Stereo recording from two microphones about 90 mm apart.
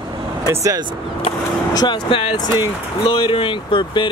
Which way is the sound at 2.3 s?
55° left (ahead or behind).